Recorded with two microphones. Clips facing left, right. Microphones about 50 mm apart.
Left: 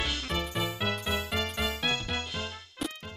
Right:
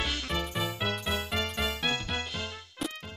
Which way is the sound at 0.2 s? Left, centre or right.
Right.